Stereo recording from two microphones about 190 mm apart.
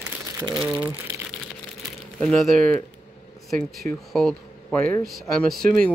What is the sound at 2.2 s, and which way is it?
Speech, centre (ahead or behind).